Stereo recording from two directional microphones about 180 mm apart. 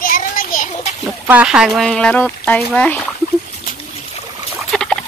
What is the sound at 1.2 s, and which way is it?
Speech, 10° right (ahead or behind).